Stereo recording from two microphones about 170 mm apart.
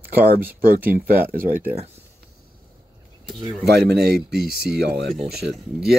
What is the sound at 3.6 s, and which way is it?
Speech, 70° right (ahead or behind).